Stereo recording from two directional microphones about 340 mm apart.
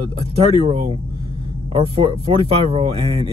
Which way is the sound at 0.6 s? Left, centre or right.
Centre.